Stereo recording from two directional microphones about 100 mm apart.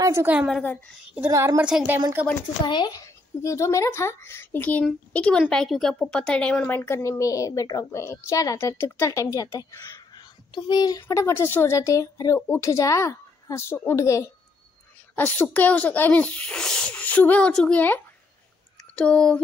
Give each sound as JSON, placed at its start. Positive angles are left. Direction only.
{"t": 0.0, "sound": "a woman's voice", "side_deg": -30}
{"t": 1.6, "sound": "a woman's voice", "side_deg": -10}
{"t": 2.6, "sound": "a woman's voice", "side_deg": 45}
{"t": 11.0, "sound": "a woman's voice", "side_deg": 30}
{"t": 15.1, "sound": "speech", "side_deg": 15}